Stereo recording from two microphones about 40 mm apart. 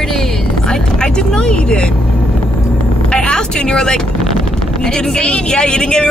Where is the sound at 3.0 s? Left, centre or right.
Left.